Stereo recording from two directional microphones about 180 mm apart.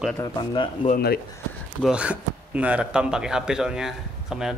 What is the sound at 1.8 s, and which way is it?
Speech, 5° right (ahead or behind).